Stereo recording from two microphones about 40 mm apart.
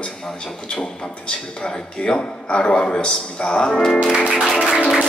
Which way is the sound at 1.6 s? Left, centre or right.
Left.